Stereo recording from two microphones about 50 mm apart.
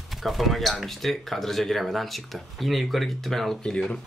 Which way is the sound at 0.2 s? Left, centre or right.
Centre.